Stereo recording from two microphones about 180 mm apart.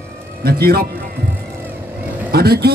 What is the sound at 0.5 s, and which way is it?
Speech, 60° right (ahead or behind).